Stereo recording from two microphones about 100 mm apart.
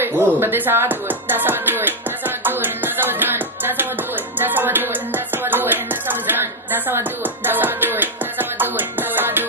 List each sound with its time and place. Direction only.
0.0 s music: 20° right (ahead or behind)